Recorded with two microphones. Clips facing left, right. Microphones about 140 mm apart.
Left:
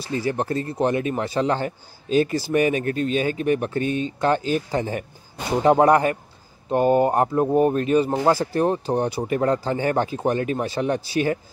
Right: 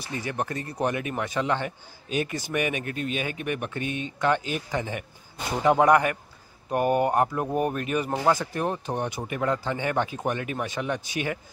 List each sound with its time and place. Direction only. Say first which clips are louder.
0.0 s speech: left 6 dB; 30° left (ahead or behind)